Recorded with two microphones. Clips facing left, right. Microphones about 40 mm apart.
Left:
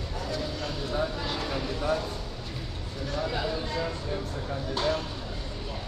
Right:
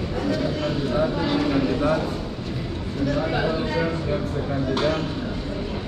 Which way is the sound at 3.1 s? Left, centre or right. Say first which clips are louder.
Right 5 dB; right.